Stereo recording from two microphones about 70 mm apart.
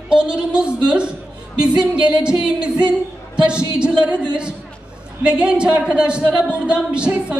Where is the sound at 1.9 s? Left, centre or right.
Centre.